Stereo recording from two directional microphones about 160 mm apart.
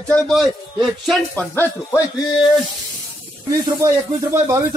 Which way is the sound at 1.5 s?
15° left (ahead or behind).